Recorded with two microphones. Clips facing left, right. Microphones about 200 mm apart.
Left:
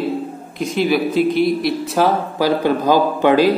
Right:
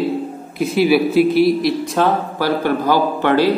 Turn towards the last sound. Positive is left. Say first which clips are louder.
# left 2 dB
turn(degrees=15)  # may be behind; listen again after turning